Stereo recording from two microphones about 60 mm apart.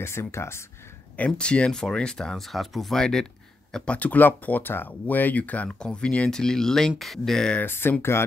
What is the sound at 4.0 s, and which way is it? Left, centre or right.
Speech, left.